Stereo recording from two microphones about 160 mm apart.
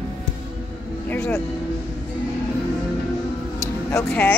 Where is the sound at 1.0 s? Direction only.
10° left (ahead or behind).